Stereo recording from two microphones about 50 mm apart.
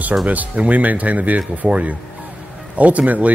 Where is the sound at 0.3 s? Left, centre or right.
Right.